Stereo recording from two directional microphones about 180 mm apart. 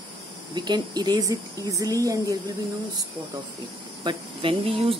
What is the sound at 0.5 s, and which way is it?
Speech, 25° right (ahead or behind).